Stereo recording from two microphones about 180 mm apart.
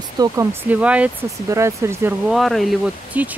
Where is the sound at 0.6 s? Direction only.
10° right (ahead or behind).